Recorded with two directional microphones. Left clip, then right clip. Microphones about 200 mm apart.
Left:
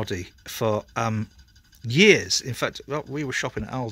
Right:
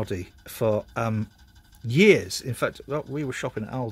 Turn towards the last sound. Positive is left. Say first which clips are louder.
# left 3 dB
turn(degrees=15)  # may be behind; listen again after turning